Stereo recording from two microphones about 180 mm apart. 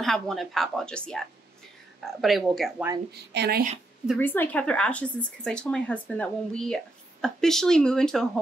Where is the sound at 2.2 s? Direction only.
Centre (ahead or behind).